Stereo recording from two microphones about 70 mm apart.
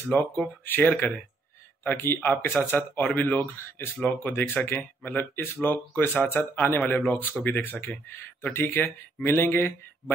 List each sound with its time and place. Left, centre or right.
0.1 s speech: left